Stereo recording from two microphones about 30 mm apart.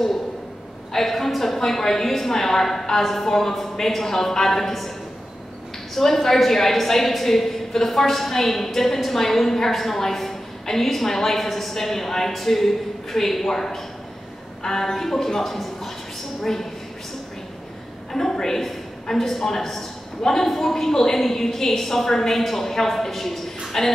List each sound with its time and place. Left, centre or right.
0.9 s a woman's voice: centre
5.9 s a woman's voice: centre
18.1 s a woman's voice: centre